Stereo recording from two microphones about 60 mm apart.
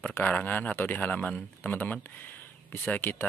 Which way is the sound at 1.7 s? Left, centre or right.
Left.